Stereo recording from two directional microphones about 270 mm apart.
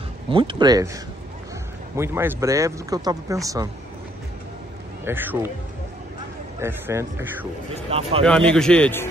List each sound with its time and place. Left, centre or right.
0.3 s speech: centre
5.0 s speech: centre
6.6 s speech: centre
7.7 s speech: right
8.3 s speech: centre